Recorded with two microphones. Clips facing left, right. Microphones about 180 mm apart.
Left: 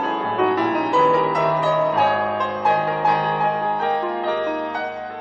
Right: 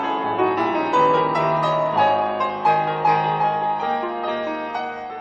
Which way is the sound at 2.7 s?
10° right (ahead or behind).